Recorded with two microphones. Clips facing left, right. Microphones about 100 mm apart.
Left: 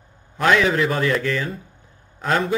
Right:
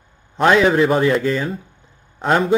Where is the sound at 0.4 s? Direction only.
30° right (ahead or behind).